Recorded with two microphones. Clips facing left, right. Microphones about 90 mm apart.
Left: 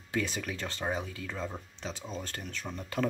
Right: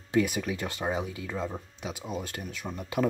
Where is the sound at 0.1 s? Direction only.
20° right (ahead or behind).